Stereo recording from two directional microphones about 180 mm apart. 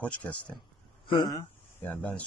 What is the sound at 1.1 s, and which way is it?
Speech, 25° left (ahead or behind).